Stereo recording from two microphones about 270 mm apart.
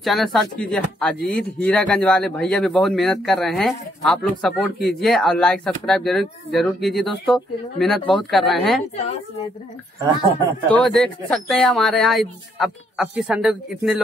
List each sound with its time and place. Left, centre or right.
0.0 s speech: centre
10.7 s speech: centre